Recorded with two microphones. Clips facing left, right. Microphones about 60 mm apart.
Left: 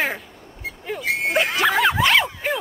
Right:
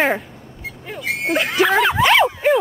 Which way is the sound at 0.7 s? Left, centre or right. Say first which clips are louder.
Left 1 dB; centre.